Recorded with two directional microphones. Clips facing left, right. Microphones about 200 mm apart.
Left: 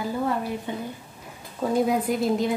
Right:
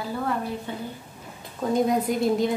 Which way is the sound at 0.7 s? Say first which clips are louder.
Left 2 dB; 15° left (ahead or behind).